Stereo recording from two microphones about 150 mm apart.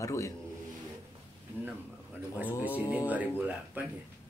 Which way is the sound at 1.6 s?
10° right (ahead or behind).